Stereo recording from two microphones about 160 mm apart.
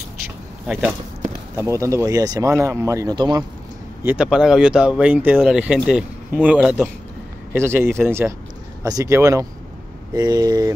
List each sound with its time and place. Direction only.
0.7 s speech: 5° right (ahead or behind)
1.6 s speech: 20° right (ahead or behind)
4.0 s speech: 10° right (ahead or behind)